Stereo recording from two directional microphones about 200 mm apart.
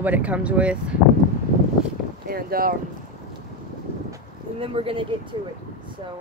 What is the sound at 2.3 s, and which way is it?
Speech, 50° right (ahead or behind).